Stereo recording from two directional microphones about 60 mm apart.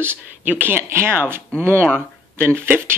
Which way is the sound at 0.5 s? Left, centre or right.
Right.